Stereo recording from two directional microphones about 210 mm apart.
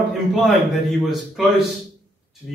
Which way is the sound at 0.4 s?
Centre (ahead or behind).